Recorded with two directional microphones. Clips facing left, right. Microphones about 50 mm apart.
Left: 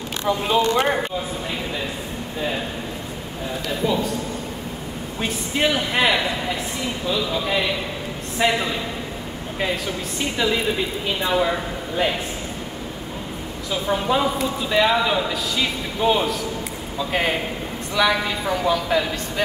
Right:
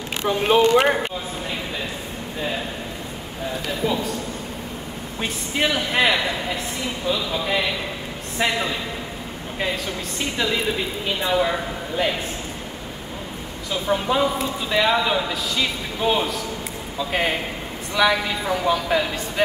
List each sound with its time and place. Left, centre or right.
0.2 s speech: right
3.6 s speech: centre
5.2 s speech: centre
10.3 s a woman's voice: centre
13.7 s speech: centre